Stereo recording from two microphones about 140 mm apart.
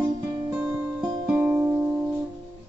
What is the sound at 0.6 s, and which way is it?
Music, 15° right (ahead or behind).